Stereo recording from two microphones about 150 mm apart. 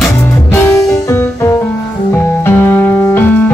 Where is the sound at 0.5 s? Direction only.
15° left (ahead or behind).